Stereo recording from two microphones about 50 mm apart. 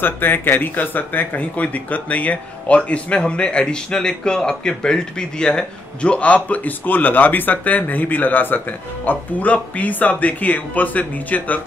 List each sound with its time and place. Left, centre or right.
0.0 s speech: left